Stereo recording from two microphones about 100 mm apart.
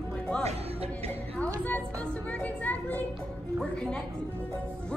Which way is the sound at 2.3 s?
15° left (ahead or behind).